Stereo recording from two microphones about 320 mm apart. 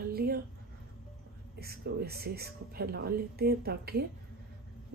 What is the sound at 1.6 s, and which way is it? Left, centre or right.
Speech, right.